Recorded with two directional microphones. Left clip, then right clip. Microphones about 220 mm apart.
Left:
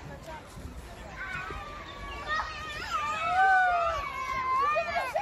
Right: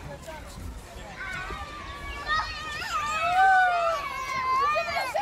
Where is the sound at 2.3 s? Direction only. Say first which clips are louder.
Right 4 dB; 35° right (ahead or behind).